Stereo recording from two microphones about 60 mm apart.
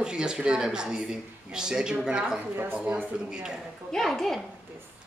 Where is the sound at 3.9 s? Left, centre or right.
Centre.